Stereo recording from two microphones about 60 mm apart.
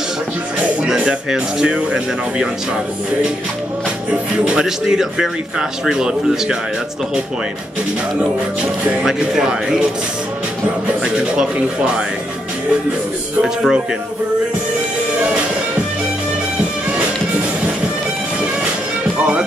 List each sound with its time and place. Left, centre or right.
0.8 s speech: centre
4.5 s speech: centre
9.0 s speech: centre
11.1 s speech: centre
13.4 s speech: centre